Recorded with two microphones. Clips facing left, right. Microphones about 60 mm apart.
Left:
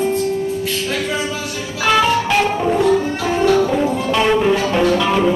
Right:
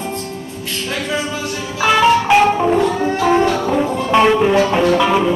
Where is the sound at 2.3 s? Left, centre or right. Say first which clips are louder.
Right 4 dB; centre.